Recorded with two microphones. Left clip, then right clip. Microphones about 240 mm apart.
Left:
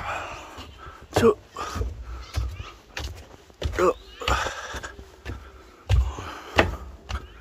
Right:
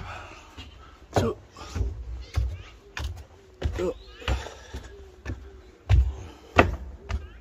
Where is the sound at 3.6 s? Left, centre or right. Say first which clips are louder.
Left 8 dB; centre.